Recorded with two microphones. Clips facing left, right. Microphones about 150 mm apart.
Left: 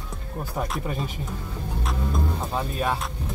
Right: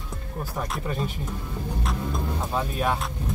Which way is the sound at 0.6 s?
25° left (ahead or behind).